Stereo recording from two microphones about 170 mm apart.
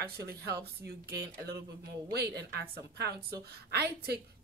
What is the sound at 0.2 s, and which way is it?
A woman's voice, 70° right (ahead or behind).